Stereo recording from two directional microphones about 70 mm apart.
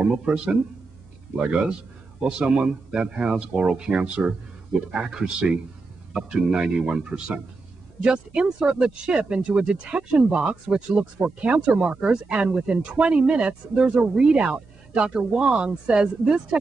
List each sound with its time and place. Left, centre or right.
0.0 s speech: centre